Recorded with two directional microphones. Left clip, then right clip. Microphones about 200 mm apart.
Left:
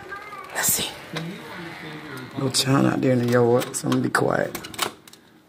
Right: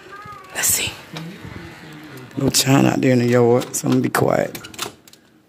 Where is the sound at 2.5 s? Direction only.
30° right (ahead or behind).